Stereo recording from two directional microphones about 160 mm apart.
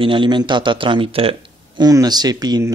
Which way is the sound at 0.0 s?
30° right (ahead or behind).